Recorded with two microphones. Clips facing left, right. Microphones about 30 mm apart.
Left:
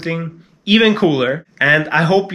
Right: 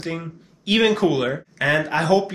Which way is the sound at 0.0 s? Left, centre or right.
Left.